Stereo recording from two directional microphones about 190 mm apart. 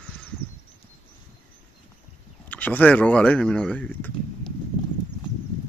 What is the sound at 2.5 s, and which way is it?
Speech, 10° left (ahead or behind).